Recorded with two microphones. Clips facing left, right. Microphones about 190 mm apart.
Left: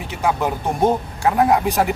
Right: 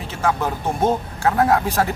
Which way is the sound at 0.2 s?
15° left (ahead or behind).